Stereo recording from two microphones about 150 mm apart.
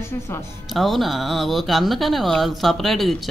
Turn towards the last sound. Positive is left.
turn(degrees=0)  # may be behind; listen again after turning